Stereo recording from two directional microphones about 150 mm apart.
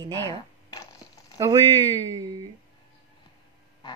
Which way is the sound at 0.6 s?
25° left (ahead or behind).